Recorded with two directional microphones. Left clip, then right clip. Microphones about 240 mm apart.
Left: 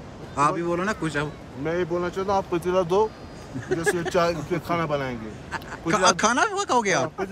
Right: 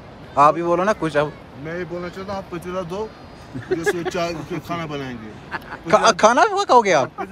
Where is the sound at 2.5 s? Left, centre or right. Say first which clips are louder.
Left 5 dB; left.